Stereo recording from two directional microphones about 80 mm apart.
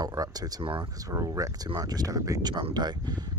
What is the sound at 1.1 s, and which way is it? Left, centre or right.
Speech, right.